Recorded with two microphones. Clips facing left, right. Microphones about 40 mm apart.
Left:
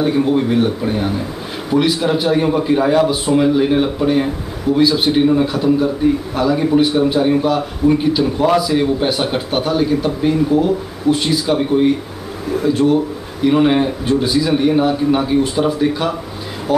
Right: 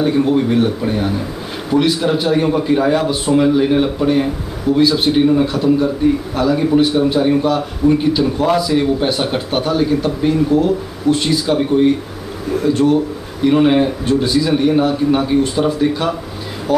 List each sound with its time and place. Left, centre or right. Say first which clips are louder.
0.0 s a man's voice: right 1 dB; centre